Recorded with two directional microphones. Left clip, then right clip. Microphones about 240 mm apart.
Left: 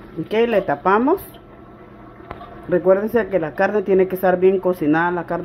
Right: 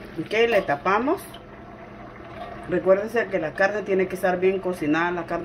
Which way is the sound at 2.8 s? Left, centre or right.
Left.